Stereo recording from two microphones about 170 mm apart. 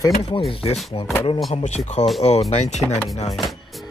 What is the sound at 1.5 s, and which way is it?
Speech, 45° left (ahead or behind).